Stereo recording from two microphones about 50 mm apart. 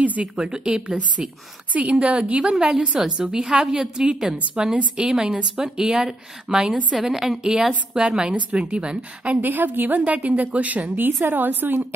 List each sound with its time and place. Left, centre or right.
0.0 s a woman's voice: right
0.4 s a woman's voice: centre
1.7 s a woman's voice: right
2.4 s a woman's voice: centre
8.5 s a woman's voice: right
9.4 s a woman's voice: right
10.0 s a woman's voice: right